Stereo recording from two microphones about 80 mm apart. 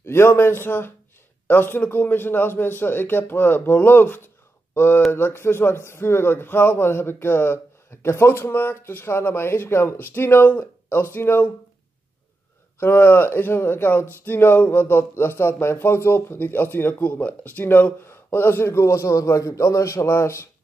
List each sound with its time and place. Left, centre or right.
0.0 s a man's voice: left
12.7 s a man's voice: left